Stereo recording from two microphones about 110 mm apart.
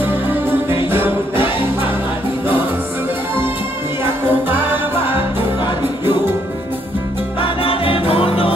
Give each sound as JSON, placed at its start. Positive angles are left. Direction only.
{"t": 0.0, "sound": "music", "side_deg": -20}
{"t": 4.0, "sound": "music", "side_deg": -20}
{"t": 7.3, "sound": "music", "side_deg": 55}